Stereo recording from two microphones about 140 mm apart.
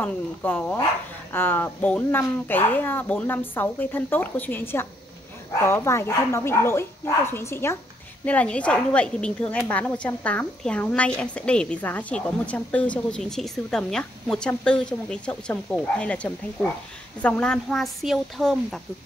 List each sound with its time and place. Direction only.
0.0 s speech: 15° left (ahead or behind)